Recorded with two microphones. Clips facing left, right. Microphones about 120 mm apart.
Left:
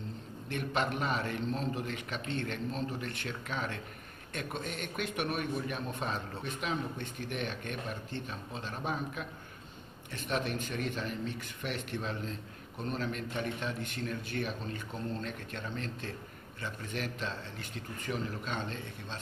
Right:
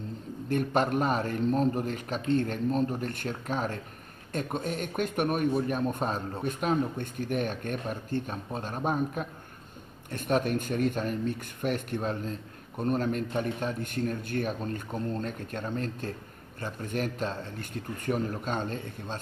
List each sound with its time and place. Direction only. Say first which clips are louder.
0.5 s speech: right 7 dB; 45° right (ahead or behind)